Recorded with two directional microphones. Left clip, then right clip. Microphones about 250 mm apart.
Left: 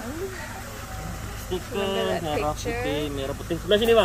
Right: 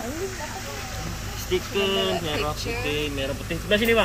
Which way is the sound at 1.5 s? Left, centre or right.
Left.